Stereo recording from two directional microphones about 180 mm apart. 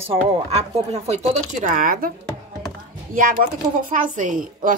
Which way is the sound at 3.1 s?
50° right (ahead or behind).